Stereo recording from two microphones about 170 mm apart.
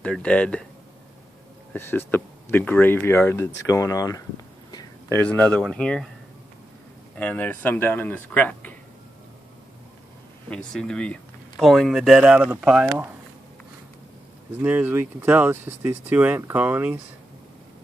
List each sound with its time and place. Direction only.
0.0 s speech: 5° left (ahead or behind)
1.7 s speech: 10° left (ahead or behind)
4.6 s a sound: 25° left (ahead or behind)
5.2 s speech: 10° left (ahead or behind)
7.2 s speech: 10° left (ahead or behind)
10.5 s speech: 5° left (ahead or behind)
14.6 s speech: 10° right (ahead or behind)